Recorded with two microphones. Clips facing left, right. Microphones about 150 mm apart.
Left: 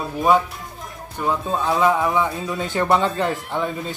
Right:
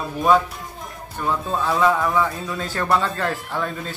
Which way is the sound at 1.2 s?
Centre (ahead or behind).